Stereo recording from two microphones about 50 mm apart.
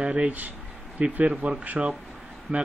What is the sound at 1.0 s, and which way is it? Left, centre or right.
Speech, right.